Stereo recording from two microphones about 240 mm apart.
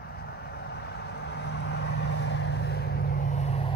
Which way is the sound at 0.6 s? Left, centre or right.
Left.